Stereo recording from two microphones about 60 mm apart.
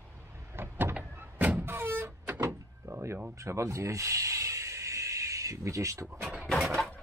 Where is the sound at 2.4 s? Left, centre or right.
Right.